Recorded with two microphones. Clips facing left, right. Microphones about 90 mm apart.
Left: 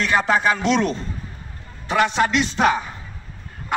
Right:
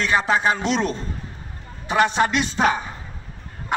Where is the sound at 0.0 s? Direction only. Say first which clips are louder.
Left 1 dB; 30° right (ahead or behind).